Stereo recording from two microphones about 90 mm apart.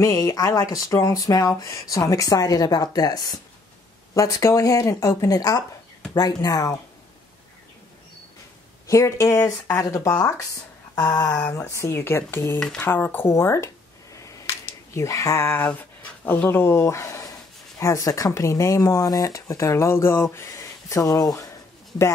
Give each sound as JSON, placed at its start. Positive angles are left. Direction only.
{"t": 0.0, "sound": "speech", "side_deg": 40}
{"t": 4.1, "sound": "speech", "side_deg": 35}
{"t": 8.8, "sound": "speech", "side_deg": 35}
{"t": 12.5, "sound": "speech", "side_deg": 10}
{"t": 12.8, "sound": "speech", "side_deg": 20}